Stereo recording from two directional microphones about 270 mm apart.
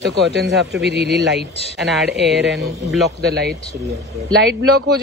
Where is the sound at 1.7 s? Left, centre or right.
Centre.